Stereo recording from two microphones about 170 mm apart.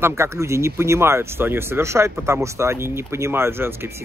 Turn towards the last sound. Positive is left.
turn(degrees=-15)  # may be behind; listen again after turning